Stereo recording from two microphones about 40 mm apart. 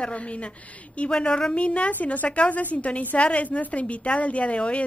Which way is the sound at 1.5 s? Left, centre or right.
Left.